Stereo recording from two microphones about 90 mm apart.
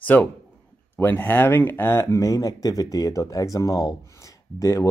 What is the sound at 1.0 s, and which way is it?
Speech, 25° left (ahead or behind).